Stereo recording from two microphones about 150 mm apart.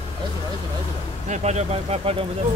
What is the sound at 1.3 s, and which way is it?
Speech, 50° right (ahead or behind).